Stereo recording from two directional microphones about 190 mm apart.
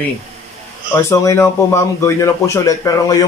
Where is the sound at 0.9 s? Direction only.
15° left (ahead or behind).